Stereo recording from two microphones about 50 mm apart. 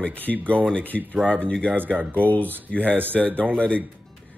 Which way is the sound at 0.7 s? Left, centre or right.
Left.